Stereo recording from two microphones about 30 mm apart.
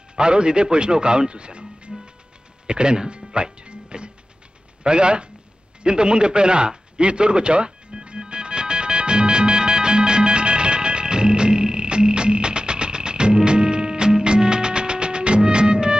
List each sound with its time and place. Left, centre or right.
0.1 s a man's voice: right
3.6 s music: right
4.8 s a man's voice: right
7.0 s music: right